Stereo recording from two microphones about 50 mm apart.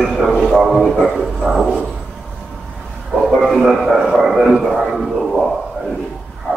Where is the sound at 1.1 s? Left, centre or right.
Centre.